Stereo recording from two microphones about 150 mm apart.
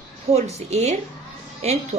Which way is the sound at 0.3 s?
45° right (ahead or behind).